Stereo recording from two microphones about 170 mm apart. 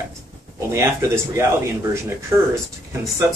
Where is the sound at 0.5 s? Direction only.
15° right (ahead or behind).